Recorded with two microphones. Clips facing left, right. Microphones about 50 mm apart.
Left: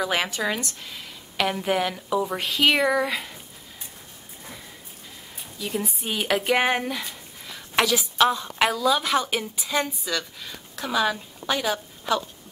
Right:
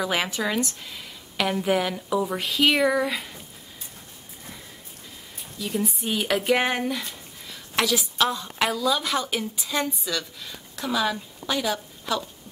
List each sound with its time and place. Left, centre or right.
0.0 s speech: centre
5.6 s a woman's voice: centre